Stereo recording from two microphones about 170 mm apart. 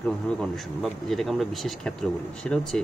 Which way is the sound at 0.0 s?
5° left (ahead or behind).